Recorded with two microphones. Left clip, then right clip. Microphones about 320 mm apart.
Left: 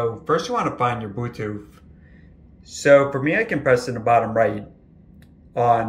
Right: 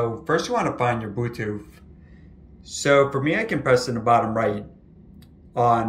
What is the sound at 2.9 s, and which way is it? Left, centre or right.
Speech, right.